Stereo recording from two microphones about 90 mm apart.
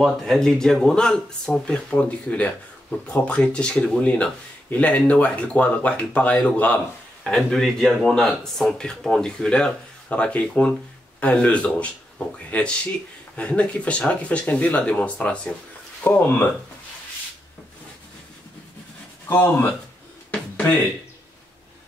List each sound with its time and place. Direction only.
0.0 s speech: 5° left (ahead or behind)
7.2 s speech: 5° left (ahead or behind)
16.0 s speech: 20° left (ahead or behind)
19.2 s speech: 25° left (ahead or behind)
20.2 s a sound: 15° left (ahead or behind)